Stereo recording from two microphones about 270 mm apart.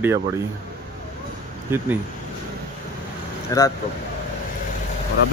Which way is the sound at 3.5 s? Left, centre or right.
Centre.